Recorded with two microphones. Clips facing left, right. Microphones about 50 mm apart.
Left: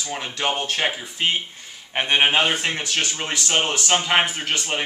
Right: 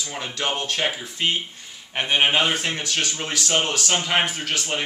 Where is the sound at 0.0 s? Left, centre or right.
Centre.